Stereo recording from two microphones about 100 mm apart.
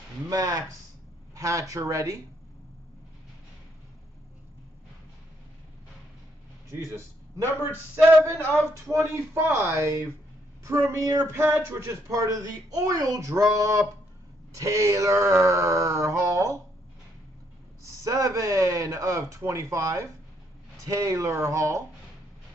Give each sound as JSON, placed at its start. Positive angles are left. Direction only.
{"t": 0.3, "sound": "speech", "side_deg": -35}
{"t": 6.9, "sound": "a man's voice", "side_deg": -25}
{"t": 17.8, "sound": "speech", "side_deg": -35}